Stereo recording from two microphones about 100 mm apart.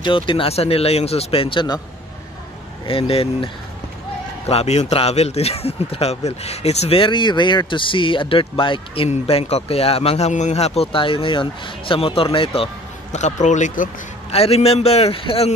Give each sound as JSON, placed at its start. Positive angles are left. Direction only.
{"t": 0.0, "sound": "a man's voice", "side_deg": 55}
{"t": 2.9, "sound": "speech", "side_deg": 65}
{"t": 4.5, "sound": "a man's voice", "side_deg": 90}
{"t": 14.3, "sound": "speech", "side_deg": 90}